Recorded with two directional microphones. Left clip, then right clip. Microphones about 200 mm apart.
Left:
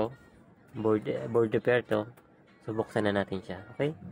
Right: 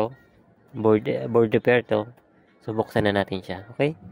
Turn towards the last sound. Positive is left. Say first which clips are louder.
# right 7 dB
turn(degrees=-40)  # may be behind; listen again after turning